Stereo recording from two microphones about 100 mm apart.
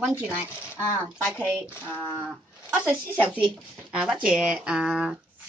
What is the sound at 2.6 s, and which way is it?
Speech, 15° right (ahead or behind).